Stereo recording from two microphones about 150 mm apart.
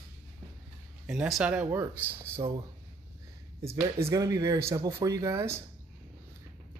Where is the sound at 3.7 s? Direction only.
20° right (ahead or behind).